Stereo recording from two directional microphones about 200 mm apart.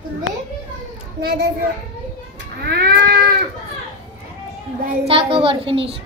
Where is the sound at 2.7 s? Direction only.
50° right (ahead or behind).